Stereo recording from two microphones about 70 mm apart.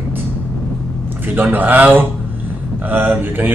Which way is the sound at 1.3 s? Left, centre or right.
Right.